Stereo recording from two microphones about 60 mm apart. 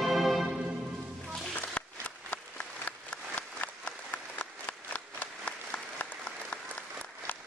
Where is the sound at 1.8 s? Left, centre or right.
Centre.